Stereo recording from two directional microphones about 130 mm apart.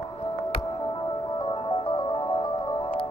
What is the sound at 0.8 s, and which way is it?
Music, 30° left (ahead or behind).